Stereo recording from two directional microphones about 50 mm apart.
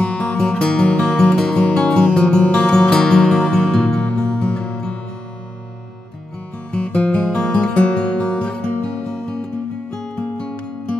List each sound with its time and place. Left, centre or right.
0.0 s music: left
6.7 s music: left